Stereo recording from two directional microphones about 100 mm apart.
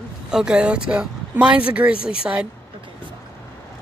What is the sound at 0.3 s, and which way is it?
Speech, 5° right (ahead or behind).